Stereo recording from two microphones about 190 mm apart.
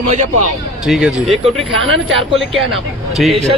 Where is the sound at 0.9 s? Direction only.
Centre (ahead or behind).